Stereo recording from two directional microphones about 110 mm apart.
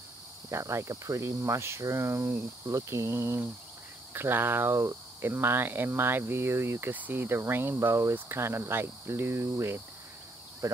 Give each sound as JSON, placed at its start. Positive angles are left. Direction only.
{"t": 0.5, "sound": "speech", "side_deg": -25}